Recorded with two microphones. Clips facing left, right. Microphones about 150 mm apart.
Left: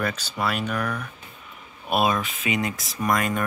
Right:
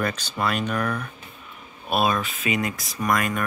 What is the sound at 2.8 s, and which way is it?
Speech, centre (ahead or behind).